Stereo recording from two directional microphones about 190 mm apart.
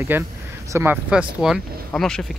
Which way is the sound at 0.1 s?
10° right (ahead or behind).